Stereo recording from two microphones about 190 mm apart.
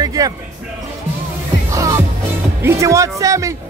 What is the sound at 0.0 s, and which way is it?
Music, 20° right (ahead or behind).